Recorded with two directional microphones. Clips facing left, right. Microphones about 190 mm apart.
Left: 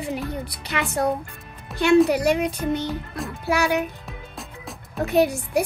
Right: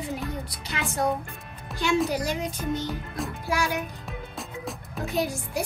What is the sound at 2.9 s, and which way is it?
Music, centre (ahead or behind).